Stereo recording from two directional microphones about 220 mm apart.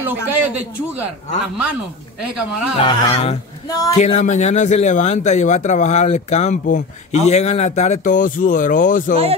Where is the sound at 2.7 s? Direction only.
25° left (ahead or behind).